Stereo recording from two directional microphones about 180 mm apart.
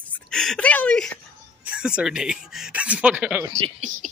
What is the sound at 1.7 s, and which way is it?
Speech, 5° right (ahead or behind).